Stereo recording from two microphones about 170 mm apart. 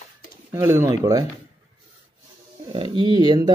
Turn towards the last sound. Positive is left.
turn(degrees=-25)  # may be behind; listen again after turning